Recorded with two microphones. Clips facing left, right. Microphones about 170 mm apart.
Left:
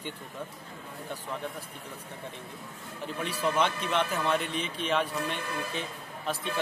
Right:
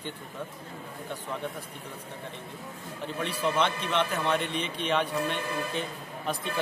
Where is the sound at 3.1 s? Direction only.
10° left (ahead or behind).